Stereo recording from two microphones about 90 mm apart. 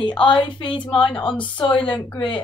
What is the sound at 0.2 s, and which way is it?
Speech, 65° left (ahead or behind).